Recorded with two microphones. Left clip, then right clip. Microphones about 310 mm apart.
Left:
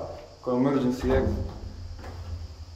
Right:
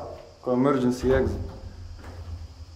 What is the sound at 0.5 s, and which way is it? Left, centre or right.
Speech, centre.